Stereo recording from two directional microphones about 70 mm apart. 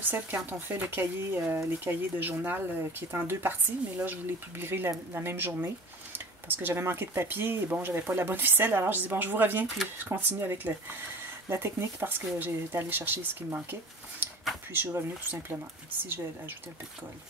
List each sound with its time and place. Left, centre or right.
0.0 s speech: right